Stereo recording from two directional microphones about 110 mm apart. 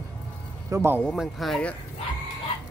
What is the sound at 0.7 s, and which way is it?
Speech, 25° right (ahead or behind).